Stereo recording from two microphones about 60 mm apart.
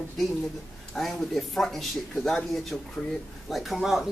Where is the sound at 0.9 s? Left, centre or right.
Centre.